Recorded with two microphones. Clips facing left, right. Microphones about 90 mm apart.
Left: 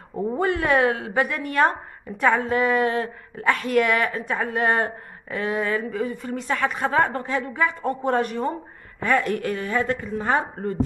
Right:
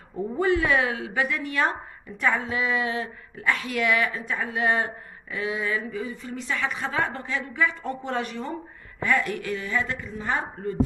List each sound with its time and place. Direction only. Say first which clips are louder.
0.4 s a woman's voice: left 2 dB; 50° left (ahead or behind)